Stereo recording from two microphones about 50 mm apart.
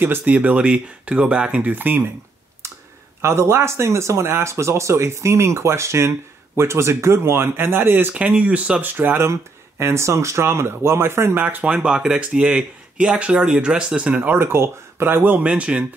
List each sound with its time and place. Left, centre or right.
0.2 s speech: right
1.7 s speech: right
3.2 s speech: right
8.1 s speech: right
9.2 s speech: right
11.6 s speech: centre
14.3 s speech: right
15.4 s speech: right